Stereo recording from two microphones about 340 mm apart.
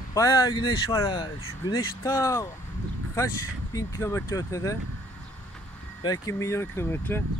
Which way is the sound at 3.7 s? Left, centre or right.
Centre.